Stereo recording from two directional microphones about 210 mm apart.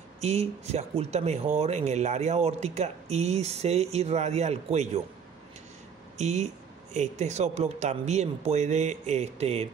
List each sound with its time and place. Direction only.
0.2 s speech: 30° right (ahead or behind)
6.1 s speech: 35° right (ahead or behind)